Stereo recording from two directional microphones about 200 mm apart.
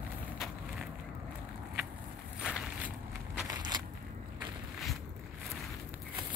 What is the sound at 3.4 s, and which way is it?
Crushing, 20° right (ahead or behind).